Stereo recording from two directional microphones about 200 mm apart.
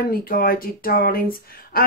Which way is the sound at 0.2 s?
45° left (ahead or behind).